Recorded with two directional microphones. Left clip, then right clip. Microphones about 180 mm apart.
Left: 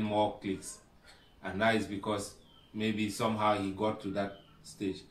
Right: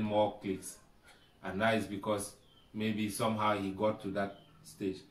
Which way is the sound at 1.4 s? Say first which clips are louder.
Left 2 dB; 15° right (ahead or behind).